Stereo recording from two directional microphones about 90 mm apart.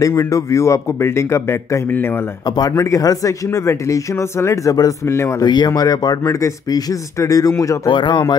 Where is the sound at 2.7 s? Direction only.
35° left (ahead or behind).